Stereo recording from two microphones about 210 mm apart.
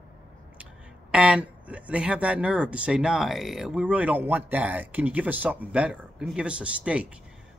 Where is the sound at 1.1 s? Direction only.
5° right (ahead or behind).